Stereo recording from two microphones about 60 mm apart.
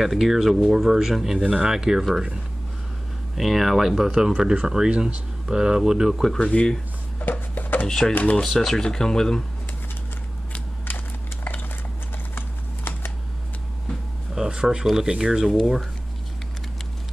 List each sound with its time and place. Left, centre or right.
0.0 s speech: centre
6.2 s speech: centre
7.2 s a sound: left
7.8 s speech: centre
8.1 s speech: left
8.4 s speech: centre
12.4 s typing: left
14.3 s speech: centre